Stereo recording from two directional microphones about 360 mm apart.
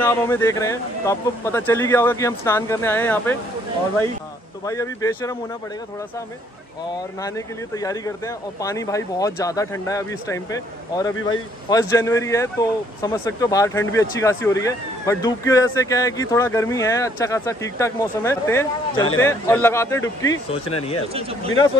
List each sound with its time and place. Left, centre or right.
0.0 s speech: centre
4.6 s speech: centre
7.2 s speech: centre
21.1 s speech: centre